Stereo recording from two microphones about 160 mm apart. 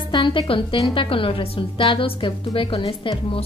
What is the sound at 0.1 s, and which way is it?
A woman's voice, 30° left (ahead or behind).